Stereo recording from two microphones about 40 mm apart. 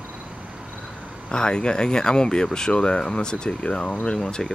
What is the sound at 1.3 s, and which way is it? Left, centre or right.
Speech, centre.